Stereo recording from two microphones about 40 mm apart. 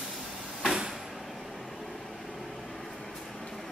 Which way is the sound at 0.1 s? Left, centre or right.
Centre.